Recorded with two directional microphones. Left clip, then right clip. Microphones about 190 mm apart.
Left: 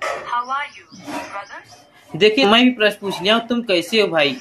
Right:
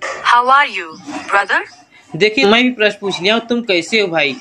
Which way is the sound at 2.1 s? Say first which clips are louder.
Right 2 dB; 10° right (ahead or behind).